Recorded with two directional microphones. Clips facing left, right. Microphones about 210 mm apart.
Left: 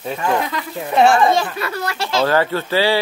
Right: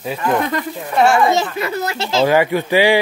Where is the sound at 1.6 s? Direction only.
20° right (ahead or behind).